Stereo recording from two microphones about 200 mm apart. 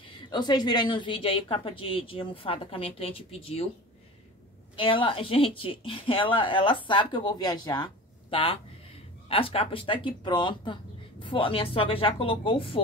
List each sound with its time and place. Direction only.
0.0 s a woman's voice: 20° left (ahead or behind)
4.7 s a woman's voice: 25° left (ahead or behind)